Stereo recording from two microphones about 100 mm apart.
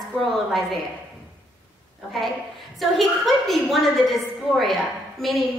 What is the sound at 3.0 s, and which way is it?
A woman's voice, centre (ahead or behind).